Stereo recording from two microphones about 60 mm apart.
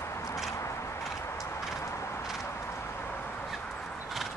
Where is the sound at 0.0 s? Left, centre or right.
Left.